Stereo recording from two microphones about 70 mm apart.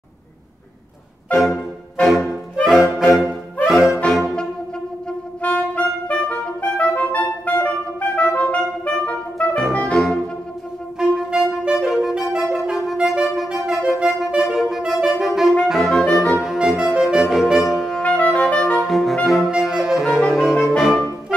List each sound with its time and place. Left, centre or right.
1.3 s music: centre
3.0 s brass instrument: centre
5.4 s music: centre
9.8 s music: centre
11.0 s clarinet: centre
15.7 s brass instrument: centre
16.3 s saxophone: centre
18.0 s music: centre
18.8 s saxophone: centre
19.2 s brass instrument: centre
20.2 s music: centre
20.7 s music: centre